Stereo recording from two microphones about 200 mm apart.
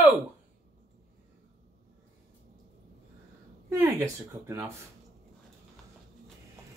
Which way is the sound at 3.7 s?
15° right (ahead or behind).